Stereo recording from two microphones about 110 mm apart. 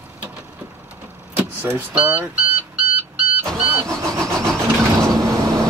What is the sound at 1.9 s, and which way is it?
Speech, 10° right (ahead or behind).